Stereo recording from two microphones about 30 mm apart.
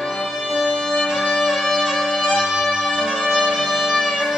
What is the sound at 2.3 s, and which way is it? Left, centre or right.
Music, centre.